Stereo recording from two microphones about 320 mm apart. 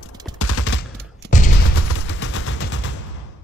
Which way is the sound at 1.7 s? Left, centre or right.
Left.